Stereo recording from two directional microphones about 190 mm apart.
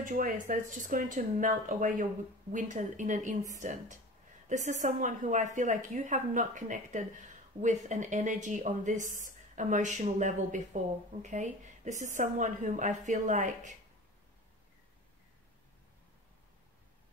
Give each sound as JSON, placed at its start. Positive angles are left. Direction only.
{"t": 0.0, "sound": "a woman's voice", "side_deg": -45}